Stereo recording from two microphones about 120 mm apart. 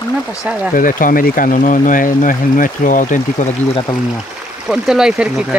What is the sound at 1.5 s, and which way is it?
Speech, 90° left.